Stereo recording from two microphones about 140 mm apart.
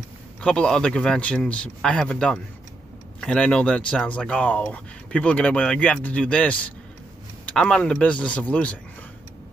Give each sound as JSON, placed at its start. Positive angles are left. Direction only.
{"t": 0.4, "sound": "a man's voice", "side_deg": 5}